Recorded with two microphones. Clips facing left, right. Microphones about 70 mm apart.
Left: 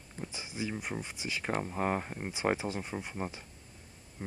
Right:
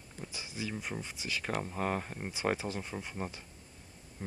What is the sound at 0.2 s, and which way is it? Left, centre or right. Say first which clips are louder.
Speech: left 3 dB; left.